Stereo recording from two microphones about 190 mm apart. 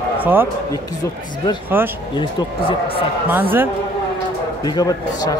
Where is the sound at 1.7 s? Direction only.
10° right (ahead or behind).